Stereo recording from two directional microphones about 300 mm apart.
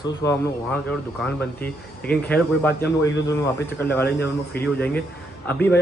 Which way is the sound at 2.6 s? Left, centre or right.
Left.